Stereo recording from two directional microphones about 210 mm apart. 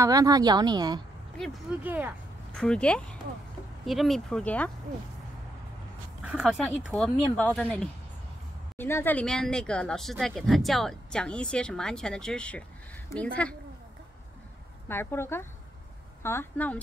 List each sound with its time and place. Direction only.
0.0 s a woman's voice: 15° right (ahead or behind)
1.4 s speech: centre (ahead or behind)
2.5 s speech: 5° left (ahead or behind)
6.2 s speech: 5° right (ahead or behind)
14.9 s speech: 10° left (ahead or behind)